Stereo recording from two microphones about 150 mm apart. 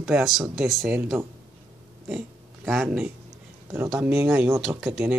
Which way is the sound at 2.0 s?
5° right (ahead or behind).